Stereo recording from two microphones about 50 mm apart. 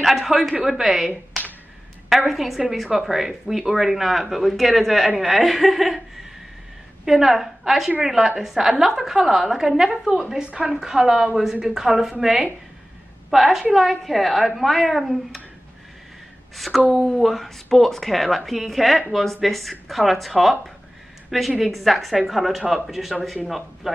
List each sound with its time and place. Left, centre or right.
0.0 s a woman's voice: centre
7.1 s a woman's voice: centre
10.3 s a woman's voice: centre
16.5 s speech: centre